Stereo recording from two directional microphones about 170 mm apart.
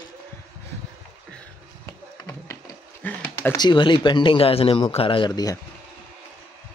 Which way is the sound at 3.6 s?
25° left (ahead or behind).